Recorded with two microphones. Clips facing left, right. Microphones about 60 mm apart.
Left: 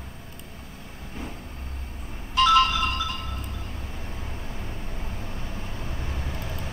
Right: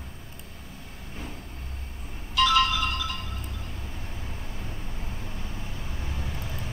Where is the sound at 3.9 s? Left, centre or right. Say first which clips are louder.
Left 2 dB; left.